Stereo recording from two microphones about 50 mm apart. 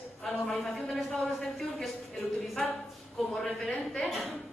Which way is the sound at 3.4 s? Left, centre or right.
Left.